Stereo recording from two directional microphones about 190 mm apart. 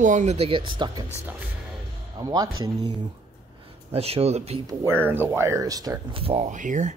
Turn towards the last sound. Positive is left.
turn(degrees=-40)  # may be behind; listen again after turning